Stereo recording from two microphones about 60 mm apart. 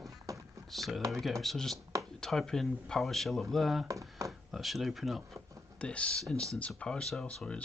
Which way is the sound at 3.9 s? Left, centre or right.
Right.